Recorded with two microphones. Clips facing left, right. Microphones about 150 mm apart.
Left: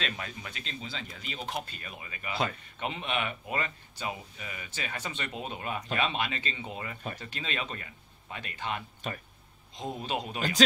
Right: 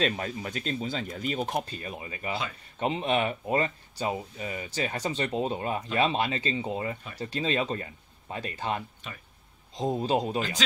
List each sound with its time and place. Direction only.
0.0 s speech: 40° right (ahead or behind)